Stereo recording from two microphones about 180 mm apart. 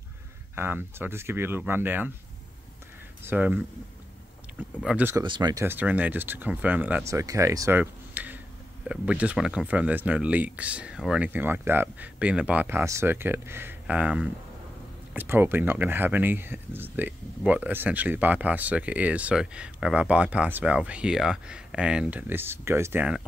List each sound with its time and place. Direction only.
0.6 s speech: 10° right (ahead or behind)
3.2 s speech: 10° right (ahead or behind)
5.2 s speech: 25° right (ahead or behind); by 23.2 s 5° right (ahead or behind)